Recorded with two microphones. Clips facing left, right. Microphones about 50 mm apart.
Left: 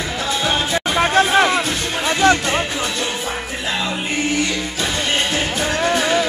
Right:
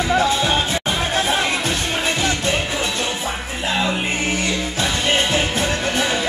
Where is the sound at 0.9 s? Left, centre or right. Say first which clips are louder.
Left 8 dB; left.